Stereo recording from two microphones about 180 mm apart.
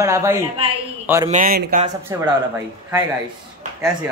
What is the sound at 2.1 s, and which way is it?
Speech, 20° right (ahead or behind).